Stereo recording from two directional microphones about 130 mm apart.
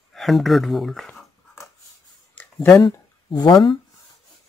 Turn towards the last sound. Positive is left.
turn(degrees=35)  # may be behind; listen again after turning